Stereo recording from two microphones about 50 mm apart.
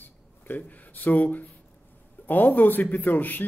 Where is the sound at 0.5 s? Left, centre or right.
Left.